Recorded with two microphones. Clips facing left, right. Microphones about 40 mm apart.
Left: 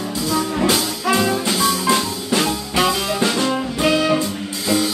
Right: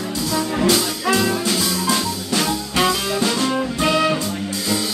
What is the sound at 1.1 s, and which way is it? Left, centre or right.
Music, centre.